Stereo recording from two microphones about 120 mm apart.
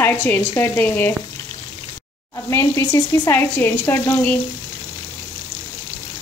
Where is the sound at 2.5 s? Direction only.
25° left (ahead or behind).